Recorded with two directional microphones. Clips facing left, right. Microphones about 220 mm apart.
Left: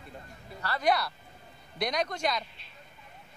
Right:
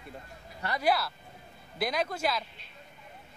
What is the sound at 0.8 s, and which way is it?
Speech, 5° right (ahead or behind).